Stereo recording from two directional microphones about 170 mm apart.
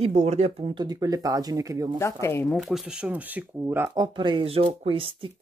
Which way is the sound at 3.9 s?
25° right (ahead or behind).